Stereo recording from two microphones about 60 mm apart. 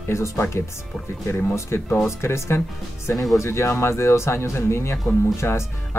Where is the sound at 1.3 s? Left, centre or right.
Left.